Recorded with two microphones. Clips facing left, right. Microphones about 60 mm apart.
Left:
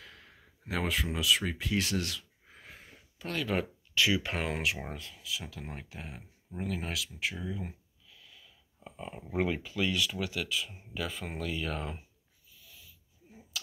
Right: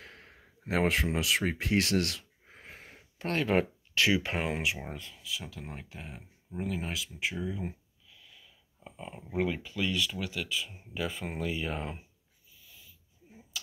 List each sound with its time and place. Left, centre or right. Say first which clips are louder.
0.0 s speech: right 2 dB; right
2.4 s a sound: right 2 dB; right
3.2 s speech: right 5 dB; right
4.2 s speech: right 1 dB; centre
4.7 s speech: even; centre
12.5 s a sound: even; centre